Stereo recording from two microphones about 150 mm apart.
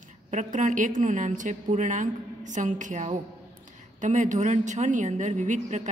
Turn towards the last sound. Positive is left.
turn(degrees=-55)  # may be behind; listen again after turning